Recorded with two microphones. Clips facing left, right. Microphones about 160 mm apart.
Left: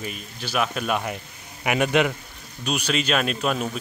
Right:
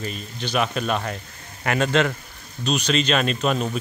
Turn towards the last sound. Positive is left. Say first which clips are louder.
# right 2 dB
turn(degrees=5)  # may be behind; listen again after turning